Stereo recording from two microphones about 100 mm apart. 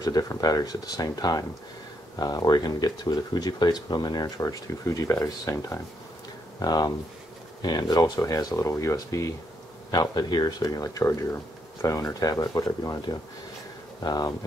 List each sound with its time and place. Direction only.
0.0 s speech: 40° left (ahead or behind)